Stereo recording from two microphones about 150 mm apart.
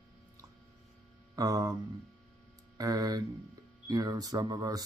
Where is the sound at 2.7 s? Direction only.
25° right (ahead or behind).